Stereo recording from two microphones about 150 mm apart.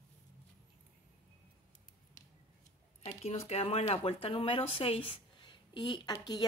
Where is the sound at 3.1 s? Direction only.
45° left (ahead or behind).